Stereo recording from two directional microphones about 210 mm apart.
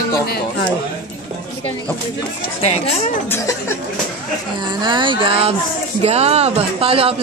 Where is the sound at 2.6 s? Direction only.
30° left (ahead or behind).